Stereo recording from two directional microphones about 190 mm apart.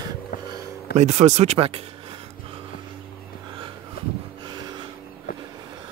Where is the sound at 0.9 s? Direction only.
35° right (ahead or behind).